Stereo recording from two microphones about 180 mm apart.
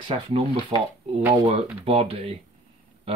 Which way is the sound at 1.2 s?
15° right (ahead or behind).